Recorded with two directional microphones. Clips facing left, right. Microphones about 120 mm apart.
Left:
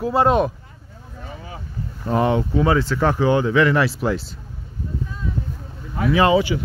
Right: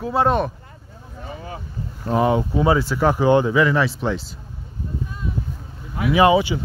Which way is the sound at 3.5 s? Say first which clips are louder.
Left 1 dB; centre (ahead or behind).